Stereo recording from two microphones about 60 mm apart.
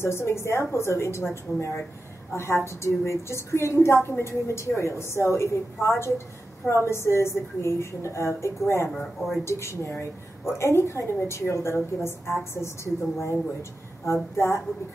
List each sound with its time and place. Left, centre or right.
0.0 s a woman's voice: left
8.9 s speech: centre
9.4 s a woman's voice: left